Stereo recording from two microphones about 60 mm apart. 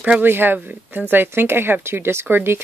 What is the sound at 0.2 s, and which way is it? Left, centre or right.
Speech, right.